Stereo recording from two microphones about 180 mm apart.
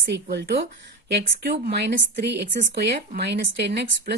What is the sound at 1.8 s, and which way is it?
Speech, 70° right (ahead or behind).